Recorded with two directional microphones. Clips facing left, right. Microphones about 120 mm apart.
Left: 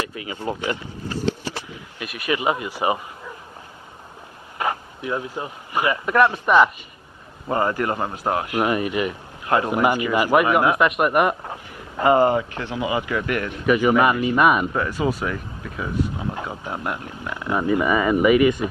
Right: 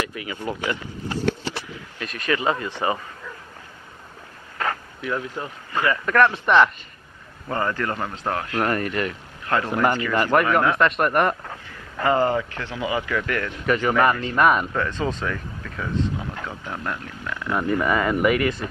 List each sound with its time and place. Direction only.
0.1 s speech: 25° left (ahead or behind)
4.6 s speech: 15° left (ahead or behind)
7.4 s speech: 25° left (ahead or behind)
11.4 s speech: 20° left (ahead or behind)
15.2 s speech: 20° left (ahead or behind)
17.6 s speech: 10° left (ahead or behind)